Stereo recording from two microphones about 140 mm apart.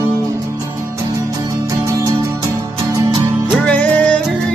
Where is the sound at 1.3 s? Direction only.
20° right (ahead or behind).